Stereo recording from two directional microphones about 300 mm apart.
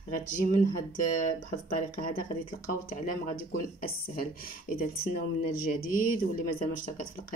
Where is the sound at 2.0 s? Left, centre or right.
Left.